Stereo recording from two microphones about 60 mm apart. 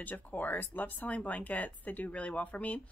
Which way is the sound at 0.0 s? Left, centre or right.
Left.